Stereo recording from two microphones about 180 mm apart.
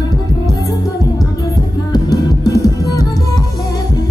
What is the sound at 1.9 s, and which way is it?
Music, 20° left (ahead or behind).